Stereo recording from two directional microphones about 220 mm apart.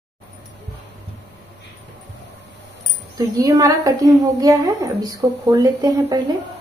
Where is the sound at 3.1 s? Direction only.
15° right (ahead or behind).